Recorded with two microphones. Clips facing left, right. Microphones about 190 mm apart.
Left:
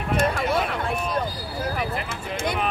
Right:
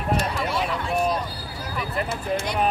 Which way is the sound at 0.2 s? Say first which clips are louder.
Left 3 dB; 50° left (ahead or behind).